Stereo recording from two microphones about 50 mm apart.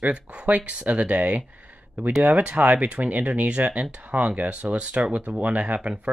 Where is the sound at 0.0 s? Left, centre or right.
Right.